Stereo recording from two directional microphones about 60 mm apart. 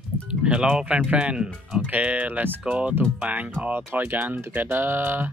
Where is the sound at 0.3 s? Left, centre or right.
Centre.